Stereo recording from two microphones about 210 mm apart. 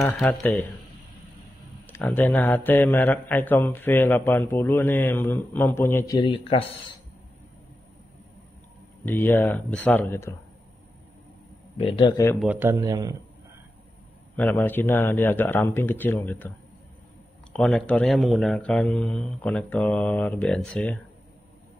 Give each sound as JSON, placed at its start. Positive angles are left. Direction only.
{"t": 0.2, "sound": "a man's voice", "side_deg": 5}
{"t": 1.9, "sound": "a man's voice", "side_deg": 10}
{"t": 9.0, "sound": "a man's voice", "side_deg": 10}
{"t": 11.8, "sound": "a man's voice", "side_deg": 25}
{"t": 12.4, "sound": "speech", "side_deg": -10}
{"t": 14.3, "sound": "a man's voice", "side_deg": 5}